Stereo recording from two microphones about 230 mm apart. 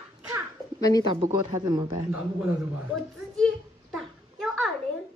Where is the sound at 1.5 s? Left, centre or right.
Centre.